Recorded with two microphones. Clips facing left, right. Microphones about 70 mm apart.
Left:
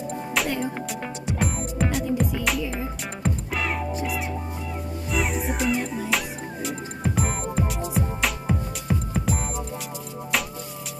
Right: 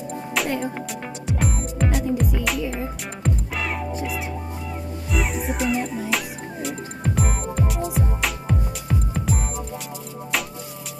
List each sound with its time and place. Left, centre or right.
0.3 s music: centre